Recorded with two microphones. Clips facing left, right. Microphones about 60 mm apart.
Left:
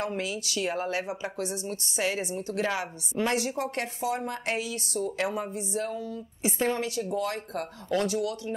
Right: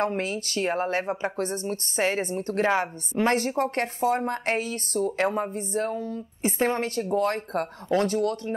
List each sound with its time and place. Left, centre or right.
0.0 s speech: right